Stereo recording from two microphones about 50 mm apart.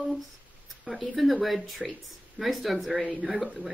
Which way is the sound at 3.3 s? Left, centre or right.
Centre.